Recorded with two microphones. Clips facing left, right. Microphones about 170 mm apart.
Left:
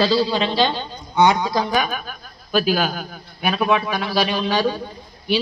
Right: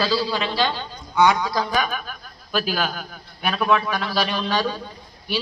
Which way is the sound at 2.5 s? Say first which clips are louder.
Left 5 dB; 5° left (ahead or behind).